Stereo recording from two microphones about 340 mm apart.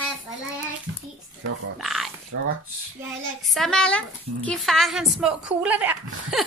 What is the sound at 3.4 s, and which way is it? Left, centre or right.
A child's voice, centre.